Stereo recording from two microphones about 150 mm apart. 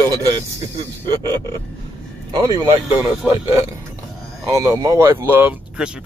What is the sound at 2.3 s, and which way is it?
Speech, 25° right (ahead or behind).